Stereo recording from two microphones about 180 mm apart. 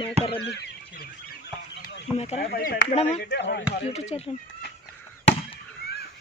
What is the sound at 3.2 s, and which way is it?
Speech, 70° left (ahead or behind).